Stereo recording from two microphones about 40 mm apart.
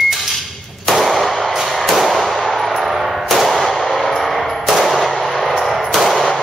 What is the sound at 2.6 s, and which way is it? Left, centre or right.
Gunshot, centre.